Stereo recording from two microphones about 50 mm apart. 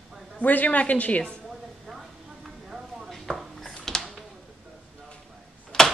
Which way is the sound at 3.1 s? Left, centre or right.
Centre.